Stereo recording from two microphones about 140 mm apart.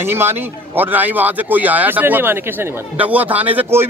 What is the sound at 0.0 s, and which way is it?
Speech, 15° right (ahead or behind).